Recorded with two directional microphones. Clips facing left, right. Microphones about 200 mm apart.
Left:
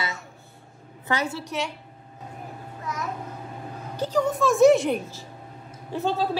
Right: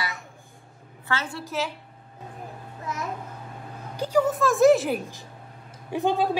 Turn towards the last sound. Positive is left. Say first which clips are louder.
# right 2 dB
turn(degrees=-15)  # may be behind; listen again after turning